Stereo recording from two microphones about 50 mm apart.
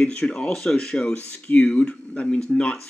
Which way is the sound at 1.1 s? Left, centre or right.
Left.